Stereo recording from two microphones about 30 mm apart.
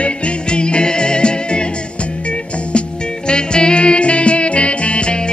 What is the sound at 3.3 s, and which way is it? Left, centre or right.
Music, left.